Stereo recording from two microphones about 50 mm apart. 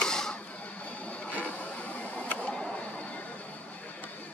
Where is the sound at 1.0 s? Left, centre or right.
Left.